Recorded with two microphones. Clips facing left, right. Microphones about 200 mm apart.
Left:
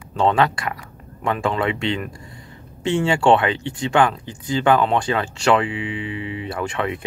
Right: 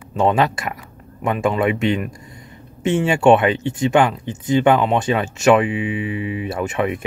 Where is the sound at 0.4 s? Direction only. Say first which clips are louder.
Right 1 dB; 25° right (ahead or behind).